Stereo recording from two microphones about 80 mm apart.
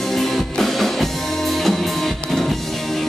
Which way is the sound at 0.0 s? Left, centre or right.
Centre.